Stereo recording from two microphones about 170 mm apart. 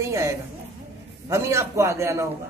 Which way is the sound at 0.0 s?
15° right (ahead or behind).